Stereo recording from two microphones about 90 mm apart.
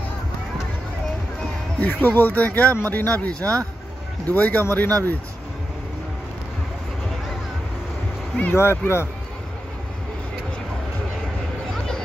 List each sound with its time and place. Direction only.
1.8 s speech: 20° left (ahead or behind)
8.5 s speech: 30° left (ahead or behind)